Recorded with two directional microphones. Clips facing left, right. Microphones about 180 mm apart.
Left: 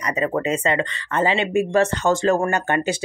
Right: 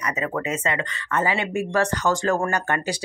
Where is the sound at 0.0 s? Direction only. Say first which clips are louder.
Left 4 dB; 30° left (ahead or behind).